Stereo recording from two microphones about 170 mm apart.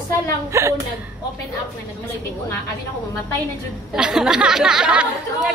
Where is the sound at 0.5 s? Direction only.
15° right (ahead or behind).